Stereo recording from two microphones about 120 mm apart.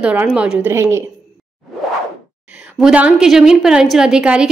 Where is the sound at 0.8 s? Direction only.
20° right (ahead or behind).